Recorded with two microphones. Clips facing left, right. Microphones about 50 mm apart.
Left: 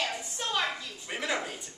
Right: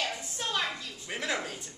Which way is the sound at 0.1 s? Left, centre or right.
Centre.